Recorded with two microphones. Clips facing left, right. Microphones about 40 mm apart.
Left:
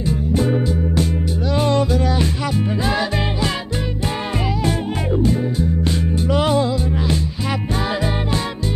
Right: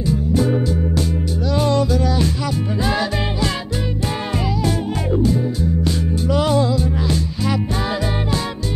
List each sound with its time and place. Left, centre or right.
0.0 s music: left
5.2 s music: left